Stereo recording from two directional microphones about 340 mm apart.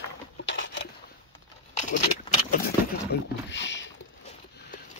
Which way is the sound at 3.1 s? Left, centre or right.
Left.